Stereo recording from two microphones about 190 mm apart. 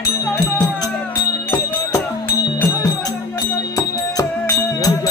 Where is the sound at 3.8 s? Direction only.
20° left (ahead or behind).